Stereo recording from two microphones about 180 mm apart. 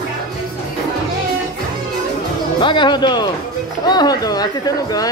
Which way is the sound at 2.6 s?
25° left (ahead or behind).